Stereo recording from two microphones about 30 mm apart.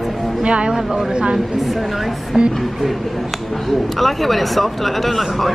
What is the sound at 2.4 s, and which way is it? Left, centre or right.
Speech, right.